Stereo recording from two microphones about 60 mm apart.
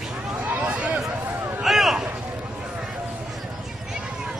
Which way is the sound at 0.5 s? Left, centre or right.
Right.